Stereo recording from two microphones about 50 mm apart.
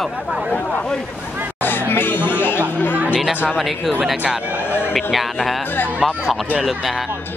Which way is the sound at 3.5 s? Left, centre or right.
Centre.